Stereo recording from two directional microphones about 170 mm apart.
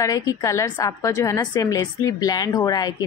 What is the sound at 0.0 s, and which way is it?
A woman's voice, 20° left (ahead or behind).